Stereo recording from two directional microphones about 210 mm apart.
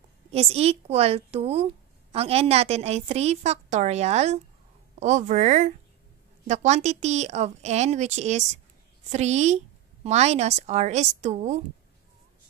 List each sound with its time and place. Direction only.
0.3 s a woman's voice: 30° right (ahead or behind)